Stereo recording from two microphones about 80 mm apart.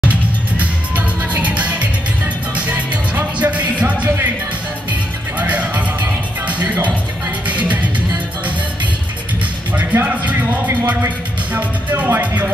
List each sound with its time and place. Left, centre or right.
0.1 s music: centre
5.4 s music: centre
7.4 s music: centre
10.0 s music: centre